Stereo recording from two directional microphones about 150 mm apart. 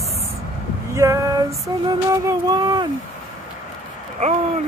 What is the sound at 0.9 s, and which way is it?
Female singing, 20° right (ahead or behind).